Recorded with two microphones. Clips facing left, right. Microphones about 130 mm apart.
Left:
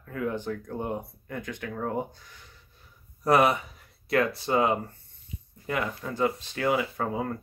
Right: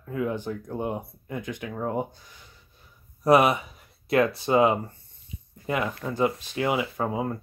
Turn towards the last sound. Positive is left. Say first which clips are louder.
# right 2 dB
turn(degrees=-15)  # may be behind; listen again after turning